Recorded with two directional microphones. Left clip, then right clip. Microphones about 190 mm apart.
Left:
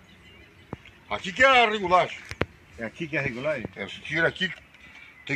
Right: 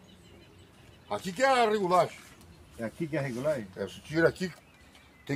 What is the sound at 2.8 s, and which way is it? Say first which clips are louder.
Speech: left 4 dB; 10° right (ahead or behind).